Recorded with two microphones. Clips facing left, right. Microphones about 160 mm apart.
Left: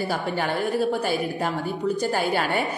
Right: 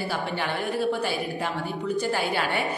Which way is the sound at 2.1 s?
45° left (ahead or behind).